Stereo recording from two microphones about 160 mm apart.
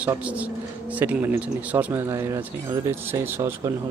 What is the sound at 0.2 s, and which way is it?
Speech, 10° right (ahead or behind).